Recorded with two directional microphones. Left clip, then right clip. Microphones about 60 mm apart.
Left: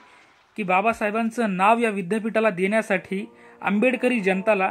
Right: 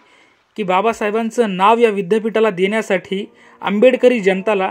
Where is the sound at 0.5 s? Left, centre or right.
Right.